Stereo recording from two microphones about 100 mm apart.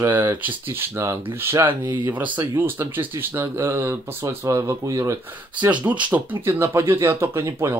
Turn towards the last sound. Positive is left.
turn(degrees=-25)  # may be behind; listen again after turning